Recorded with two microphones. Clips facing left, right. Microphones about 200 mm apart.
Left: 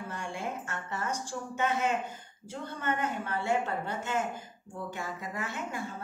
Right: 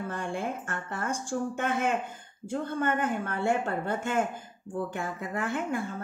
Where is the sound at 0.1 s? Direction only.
55° right (ahead or behind).